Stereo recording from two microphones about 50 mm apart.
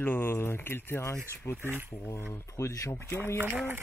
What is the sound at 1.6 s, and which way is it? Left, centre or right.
Speech, right.